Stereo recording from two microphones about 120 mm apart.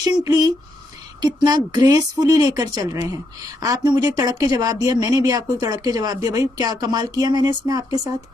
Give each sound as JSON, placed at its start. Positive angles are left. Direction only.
{"t": 0.0, "sound": "speech", "side_deg": -30}